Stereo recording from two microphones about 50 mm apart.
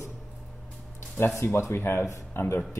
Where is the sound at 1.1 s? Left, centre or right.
Left.